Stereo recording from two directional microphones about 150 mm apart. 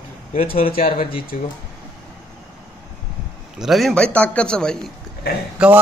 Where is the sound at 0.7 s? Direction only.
70° left (ahead or behind).